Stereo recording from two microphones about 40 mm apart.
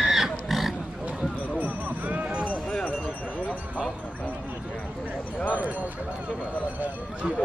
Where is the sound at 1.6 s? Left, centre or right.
Right.